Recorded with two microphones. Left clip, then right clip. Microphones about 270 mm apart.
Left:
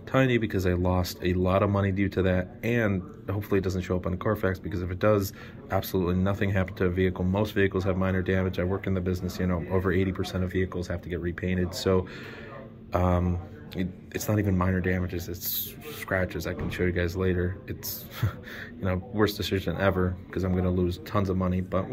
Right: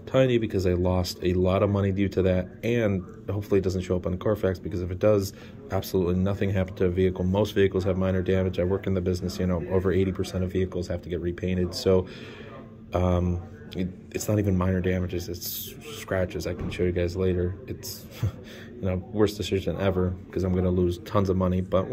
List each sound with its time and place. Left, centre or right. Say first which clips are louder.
0.1 s speech: right 2 dB; centre